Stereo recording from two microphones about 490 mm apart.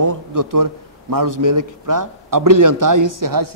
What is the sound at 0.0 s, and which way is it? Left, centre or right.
A man's voice, right.